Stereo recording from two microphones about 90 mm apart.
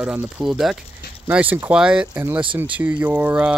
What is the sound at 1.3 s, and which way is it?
Speech, 15° right (ahead or behind).